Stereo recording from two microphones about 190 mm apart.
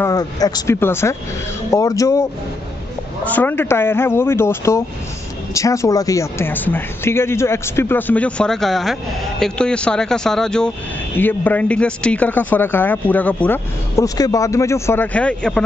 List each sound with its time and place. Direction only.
0.0 s speech: 20° left (ahead or behind)
3.3 s speech: 10° left (ahead or behind)